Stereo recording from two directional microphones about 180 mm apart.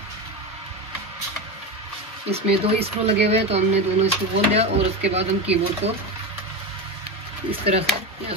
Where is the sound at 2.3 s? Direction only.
35° right (ahead or behind).